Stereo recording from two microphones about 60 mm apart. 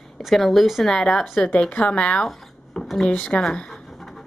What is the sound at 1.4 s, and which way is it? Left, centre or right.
Speech, left.